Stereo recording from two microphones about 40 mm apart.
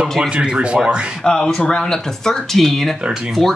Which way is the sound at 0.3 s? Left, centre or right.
Right.